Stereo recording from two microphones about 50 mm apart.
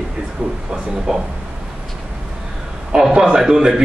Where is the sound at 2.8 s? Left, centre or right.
Centre.